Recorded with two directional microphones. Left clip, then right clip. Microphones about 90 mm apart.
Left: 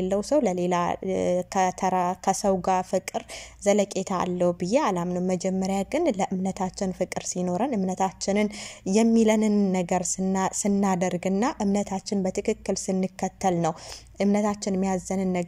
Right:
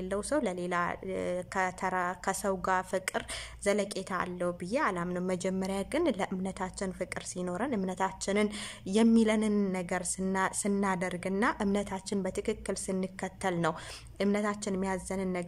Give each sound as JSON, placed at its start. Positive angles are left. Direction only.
{"t": 0.0, "sound": "a woman's voice", "side_deg": 25}
{"t": 5.1, "sound": "a woman's voice", "side_deg": 10}